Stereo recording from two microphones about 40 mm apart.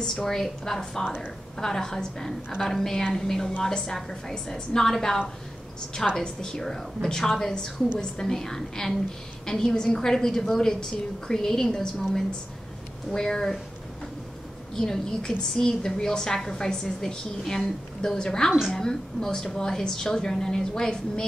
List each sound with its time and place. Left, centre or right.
0.0 s a woman's voice: centre
6.2 s a woman's voice: left
14.8 s a woman's voice: centre